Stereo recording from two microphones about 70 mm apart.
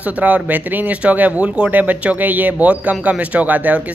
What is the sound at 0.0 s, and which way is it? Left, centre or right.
A man's voice, right.